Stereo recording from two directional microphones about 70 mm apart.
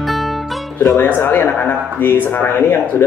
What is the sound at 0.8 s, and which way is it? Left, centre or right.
Music, left.